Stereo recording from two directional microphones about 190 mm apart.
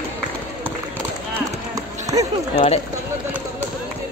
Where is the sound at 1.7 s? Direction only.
20° right (ahead or behind).